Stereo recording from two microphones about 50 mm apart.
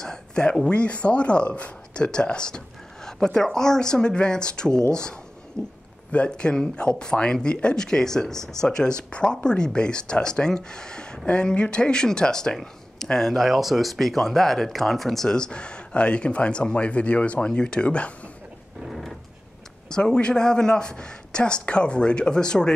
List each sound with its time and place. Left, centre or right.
0.0 s speech: centre
6.1 s speech: left; by 15.2 s centre
15.2 s speech: centre
18.9 s a sound: centre
19.9 s speech: centre